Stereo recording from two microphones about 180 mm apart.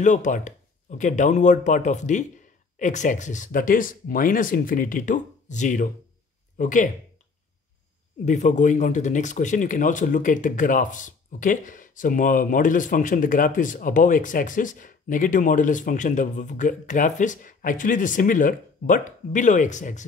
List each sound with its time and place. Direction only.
0.0 s speech: 40° left (ahead or behind)
8.3 s speech: 40° left (ahead or behind)